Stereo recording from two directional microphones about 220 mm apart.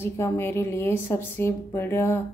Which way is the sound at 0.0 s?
10° left (ahead or behind).